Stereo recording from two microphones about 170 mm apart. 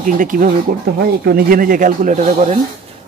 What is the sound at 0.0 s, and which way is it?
Speech, 55° right (ahead or behind).